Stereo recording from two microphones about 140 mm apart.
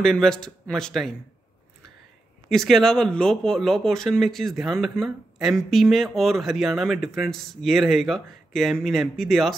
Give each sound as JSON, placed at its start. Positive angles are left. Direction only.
{"t": 0.0, "sound": "speech", "side_deg": 5}
{"t": 2.5, "sound": "speech", "side_deg": 0}